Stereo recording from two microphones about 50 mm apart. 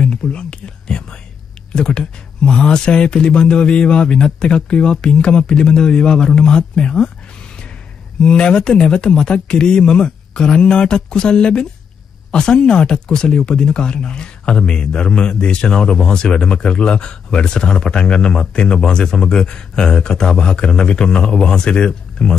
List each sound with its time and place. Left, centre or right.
0.0 s whispering: centre
1.8 s speech: centre
8.2 s speech: centre